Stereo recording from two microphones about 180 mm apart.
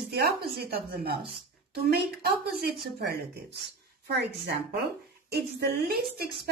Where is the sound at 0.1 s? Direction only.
60° right (ahead or behind).